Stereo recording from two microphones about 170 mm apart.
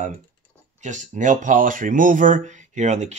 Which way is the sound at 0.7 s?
45° right (ahead or behind).